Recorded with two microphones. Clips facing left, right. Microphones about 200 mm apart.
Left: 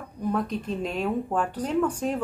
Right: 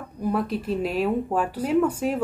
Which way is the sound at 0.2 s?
5° right (ahead or behind).